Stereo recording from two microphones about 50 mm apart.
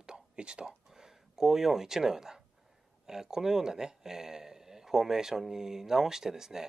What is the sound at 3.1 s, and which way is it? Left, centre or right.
Speech, centre.